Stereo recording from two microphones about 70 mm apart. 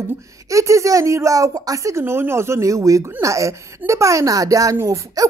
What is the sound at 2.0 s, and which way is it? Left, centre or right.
A woman's voice, right.